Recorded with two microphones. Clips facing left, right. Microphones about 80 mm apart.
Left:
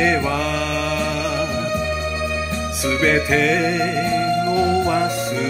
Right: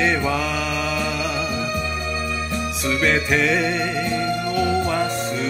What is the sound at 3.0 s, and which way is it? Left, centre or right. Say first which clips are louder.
Music: left 2 dB; centre.